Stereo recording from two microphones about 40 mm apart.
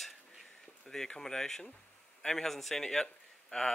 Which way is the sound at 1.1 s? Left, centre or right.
Centre.